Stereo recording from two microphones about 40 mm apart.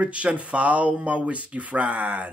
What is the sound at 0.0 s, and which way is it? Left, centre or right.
Speech, right.